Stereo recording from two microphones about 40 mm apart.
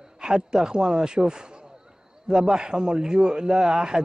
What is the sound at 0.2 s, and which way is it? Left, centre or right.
A man's voice, centre.